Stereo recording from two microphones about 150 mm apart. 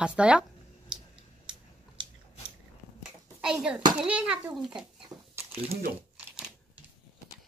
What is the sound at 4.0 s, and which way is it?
A child's voice, 5° right (ahead or behind).